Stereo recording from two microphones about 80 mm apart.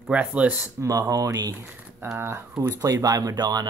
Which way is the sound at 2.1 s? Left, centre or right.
Right.